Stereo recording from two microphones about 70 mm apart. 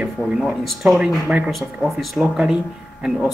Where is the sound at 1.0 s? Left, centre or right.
Centre.